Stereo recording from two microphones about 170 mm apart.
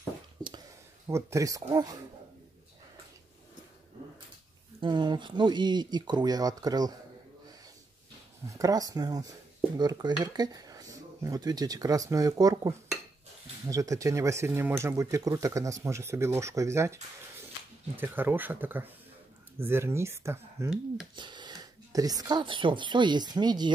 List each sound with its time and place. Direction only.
1.0 s speech: 15° right (ahead or behind)
4.7 s speech: 30° right (ahead or behind)
8.5 s speech: 20° right (ahead or behind)
21.2 s speech: 25° right (ahead or behind)